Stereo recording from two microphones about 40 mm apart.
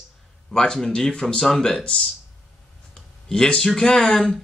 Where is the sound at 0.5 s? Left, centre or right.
Centre.